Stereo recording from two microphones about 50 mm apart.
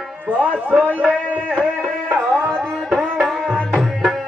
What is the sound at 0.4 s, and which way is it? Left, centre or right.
Speech, right.